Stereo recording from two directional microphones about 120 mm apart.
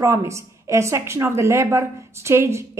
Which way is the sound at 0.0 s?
25° right (ahead or behind).